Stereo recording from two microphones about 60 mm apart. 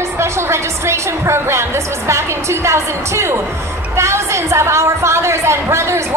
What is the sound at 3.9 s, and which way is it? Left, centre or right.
A woman's voice, right.